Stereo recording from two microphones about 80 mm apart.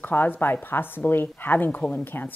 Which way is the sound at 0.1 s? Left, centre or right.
Left.